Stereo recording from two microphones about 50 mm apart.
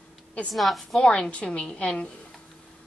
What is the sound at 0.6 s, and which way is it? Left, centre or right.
Speech, centre.